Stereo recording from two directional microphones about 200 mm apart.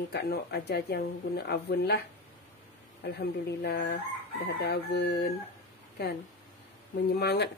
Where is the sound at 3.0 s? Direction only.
60° left (ahead or behind).